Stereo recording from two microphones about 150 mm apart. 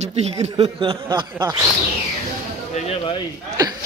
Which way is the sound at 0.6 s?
35° right (ahead or behind).